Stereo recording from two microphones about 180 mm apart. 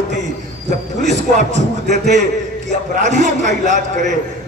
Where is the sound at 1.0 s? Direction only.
40° right (ahead or behind).